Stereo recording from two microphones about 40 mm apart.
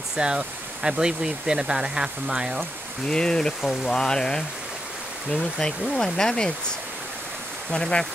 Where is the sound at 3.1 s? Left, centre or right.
Centre.